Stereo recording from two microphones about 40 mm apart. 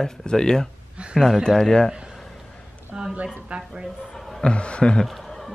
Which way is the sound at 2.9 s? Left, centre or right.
Right.